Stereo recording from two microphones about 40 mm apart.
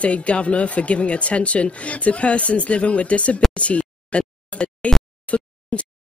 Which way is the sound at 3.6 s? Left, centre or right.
Left.